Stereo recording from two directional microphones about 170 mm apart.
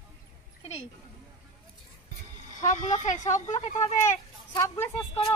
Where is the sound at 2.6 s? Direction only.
45° left (ahead or behind).